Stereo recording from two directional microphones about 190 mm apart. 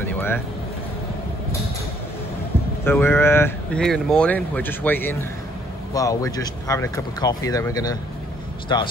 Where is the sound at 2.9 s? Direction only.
10° left (ahead or behind).